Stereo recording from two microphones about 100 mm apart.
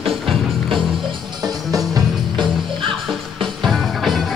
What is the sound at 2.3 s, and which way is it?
Music, 55° right (ahead or behind).